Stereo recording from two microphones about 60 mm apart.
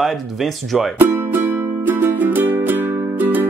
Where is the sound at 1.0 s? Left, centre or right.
Right.